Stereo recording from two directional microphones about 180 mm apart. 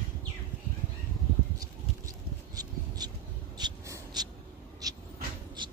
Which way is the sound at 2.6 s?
20° right (ahead or behind).